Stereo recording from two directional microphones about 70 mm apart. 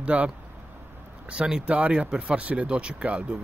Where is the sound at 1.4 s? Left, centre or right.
Centre.